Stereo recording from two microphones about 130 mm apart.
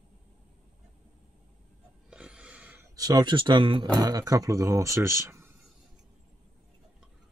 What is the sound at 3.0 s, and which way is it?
Speech, 30° right (ahead or behind).